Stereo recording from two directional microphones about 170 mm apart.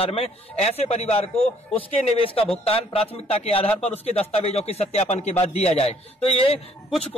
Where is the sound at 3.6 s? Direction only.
10° left (ahead or behind).